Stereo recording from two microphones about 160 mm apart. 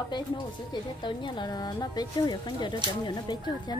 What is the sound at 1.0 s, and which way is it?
Child singing, 30° left (ahead or behind).